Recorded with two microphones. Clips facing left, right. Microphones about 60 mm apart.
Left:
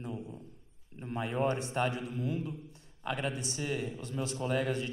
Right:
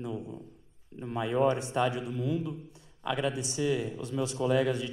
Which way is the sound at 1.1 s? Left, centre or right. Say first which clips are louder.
Right 5 dB; left.